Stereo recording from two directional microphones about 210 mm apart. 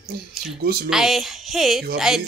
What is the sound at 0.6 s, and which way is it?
Speech, 45° right (ahead or behind).